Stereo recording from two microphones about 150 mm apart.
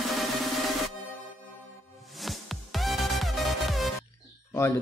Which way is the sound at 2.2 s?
Centre (ahead or behind).